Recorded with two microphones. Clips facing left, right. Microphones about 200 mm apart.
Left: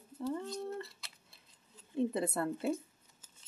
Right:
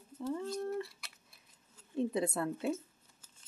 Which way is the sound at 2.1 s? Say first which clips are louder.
Even; centre (ahead or behind).